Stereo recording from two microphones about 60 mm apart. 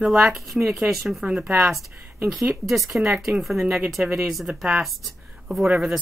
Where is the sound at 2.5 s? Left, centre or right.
Centre.